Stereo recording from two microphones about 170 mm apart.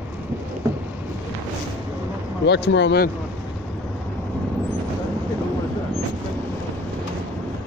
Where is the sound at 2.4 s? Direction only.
90° left.